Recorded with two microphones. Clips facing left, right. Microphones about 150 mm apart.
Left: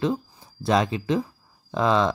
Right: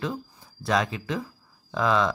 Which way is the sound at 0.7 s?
30° left (ahead or behind).